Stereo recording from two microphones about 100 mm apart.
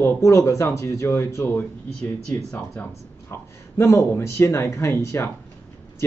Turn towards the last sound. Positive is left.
turn(degrees=25)  # may be behind; listen again after turning